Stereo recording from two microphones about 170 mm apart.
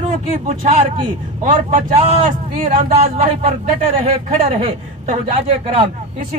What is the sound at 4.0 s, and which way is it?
Speech, 35° right (ahead or behind).